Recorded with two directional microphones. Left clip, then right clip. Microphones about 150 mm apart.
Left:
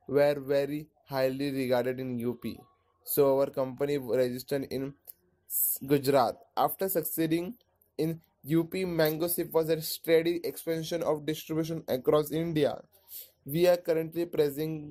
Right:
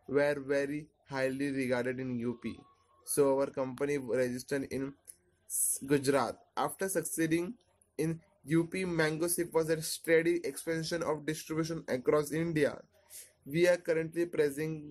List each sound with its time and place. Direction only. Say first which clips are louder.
0.0 s a man's voice: left 5 dB; 20° left (ahead or behind)